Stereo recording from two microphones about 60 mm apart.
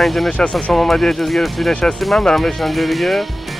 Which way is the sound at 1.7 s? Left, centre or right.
Centre.